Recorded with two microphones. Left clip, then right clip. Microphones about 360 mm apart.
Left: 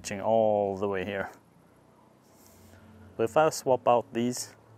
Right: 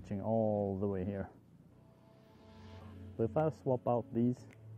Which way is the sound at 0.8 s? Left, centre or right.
Centre.